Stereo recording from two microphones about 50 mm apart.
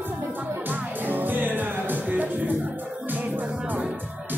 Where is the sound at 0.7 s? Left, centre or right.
Right.